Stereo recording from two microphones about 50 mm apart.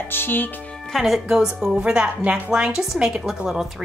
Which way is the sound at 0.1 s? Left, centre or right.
Left.